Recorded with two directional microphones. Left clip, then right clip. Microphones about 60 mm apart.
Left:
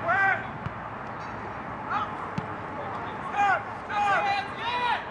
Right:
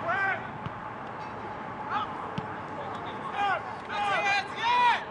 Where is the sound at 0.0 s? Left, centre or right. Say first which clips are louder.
Left 5 dB; centre.